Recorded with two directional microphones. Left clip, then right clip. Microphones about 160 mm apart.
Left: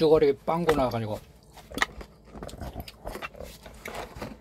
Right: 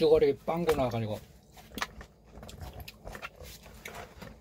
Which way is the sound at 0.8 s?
15° left (ahead or behind).